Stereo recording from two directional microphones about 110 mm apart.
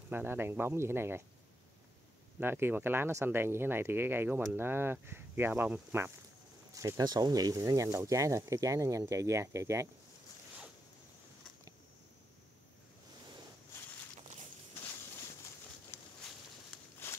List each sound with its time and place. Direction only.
0.1 s speech: 20° right (ahead or behind)
2.4 s speech: 20° right (ahead or behind)
6.7 s speech: 30° right (ahead or behind)